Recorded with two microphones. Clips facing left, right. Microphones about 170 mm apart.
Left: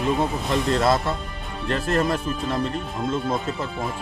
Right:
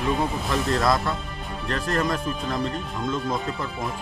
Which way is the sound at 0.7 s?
25° left (ahead or behind).